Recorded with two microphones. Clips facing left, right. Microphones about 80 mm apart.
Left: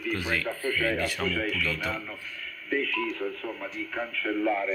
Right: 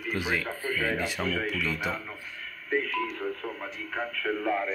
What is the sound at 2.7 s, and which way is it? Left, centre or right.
Speech, right.